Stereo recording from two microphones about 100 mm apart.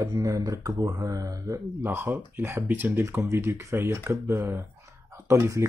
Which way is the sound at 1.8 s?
25° right (ahead or behind).